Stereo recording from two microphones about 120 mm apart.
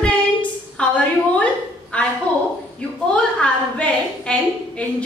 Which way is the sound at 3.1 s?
10° left (ahead or behind).